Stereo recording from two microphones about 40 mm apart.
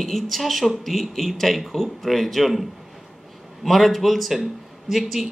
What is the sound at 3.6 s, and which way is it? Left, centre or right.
Speech, centre.